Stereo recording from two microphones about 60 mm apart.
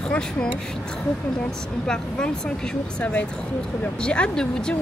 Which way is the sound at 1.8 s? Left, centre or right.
Centre.